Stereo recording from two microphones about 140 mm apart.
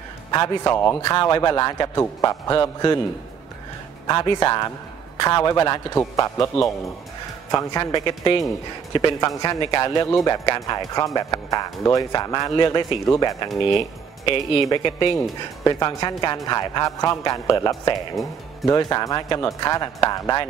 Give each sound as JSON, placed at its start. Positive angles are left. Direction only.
{"t": 0.3, "sound": "a man's voice", "side_deg": 25}
{"t": 4.1, "sound": "a man's voice", "side_deg": 30}
{"t": 13.5, "sound": "speech", "side_deg": 0}
{"t": 14.2, "sound": "a man's voice", "side_deg": 40}